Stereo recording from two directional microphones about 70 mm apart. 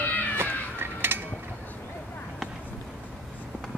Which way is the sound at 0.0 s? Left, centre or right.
Left.